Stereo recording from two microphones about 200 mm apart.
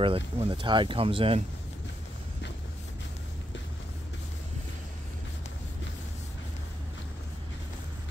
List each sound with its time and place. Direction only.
0.0 s speech: 25° right (ahead or behind)